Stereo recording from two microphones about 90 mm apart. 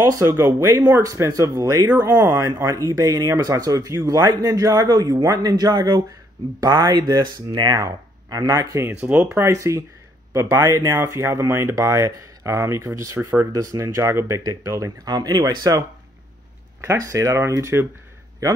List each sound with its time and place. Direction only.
0.0 s speech: 35° right (ahead or behind)
2.0 s speech: 25° right (ahead or behind)
9.0 s speech: 20° right (ahead or behind); by 11.0 s 40° right (ahead or behind)
11.0 s speech: 30° right (ahead or behind)
16.8 s speech: 40° right (ahead or behind)